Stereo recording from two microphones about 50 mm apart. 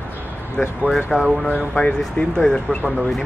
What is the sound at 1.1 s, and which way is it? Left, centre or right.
Speech, left.